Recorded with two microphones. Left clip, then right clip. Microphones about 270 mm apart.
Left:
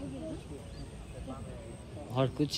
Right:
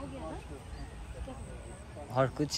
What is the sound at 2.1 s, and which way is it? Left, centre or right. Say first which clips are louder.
Speech: right 1 dB; centre.